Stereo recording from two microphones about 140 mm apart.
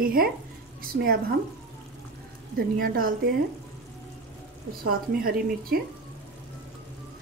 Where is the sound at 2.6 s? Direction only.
90° right.